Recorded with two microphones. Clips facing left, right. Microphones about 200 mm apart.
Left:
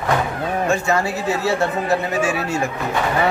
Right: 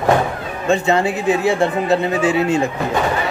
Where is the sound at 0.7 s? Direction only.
20° right (ahead or behind).